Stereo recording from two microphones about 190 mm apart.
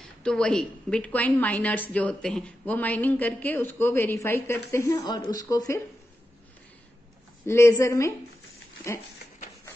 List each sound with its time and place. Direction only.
0.0 s a woman's voice: 5° left (ahead or behind); by 5.8 s 20° left (ahead or behind)
7.4 s a woman's voice: 15° left (ahead or behind)